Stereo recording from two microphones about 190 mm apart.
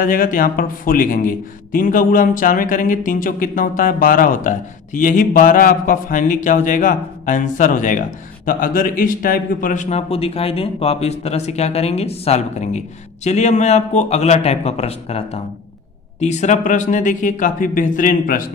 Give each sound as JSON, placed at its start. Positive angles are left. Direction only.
{"t": 0.0, "sound": "a man's voice", "side_deg": 45}